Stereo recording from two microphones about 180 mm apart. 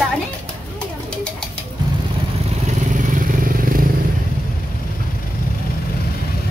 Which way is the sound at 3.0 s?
50° right (ahead or behind).